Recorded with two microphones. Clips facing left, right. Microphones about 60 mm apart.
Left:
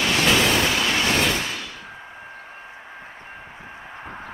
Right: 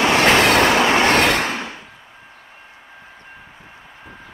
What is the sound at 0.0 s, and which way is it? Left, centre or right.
Vehicle, right.